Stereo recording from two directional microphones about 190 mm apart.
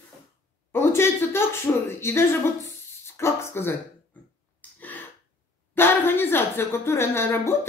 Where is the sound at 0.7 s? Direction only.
15° left (ahead or behind).